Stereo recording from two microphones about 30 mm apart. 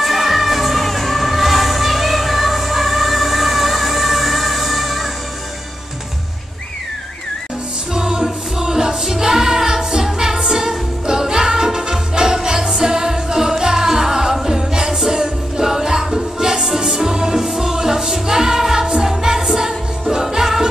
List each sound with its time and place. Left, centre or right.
0.0 s music: centre
7.9 s music: centre